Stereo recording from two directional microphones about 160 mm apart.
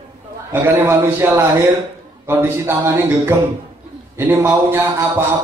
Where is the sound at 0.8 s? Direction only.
15° right (ahead or behind).